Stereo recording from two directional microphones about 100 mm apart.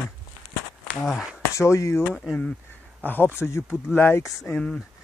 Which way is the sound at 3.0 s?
20° left (ahead or behind).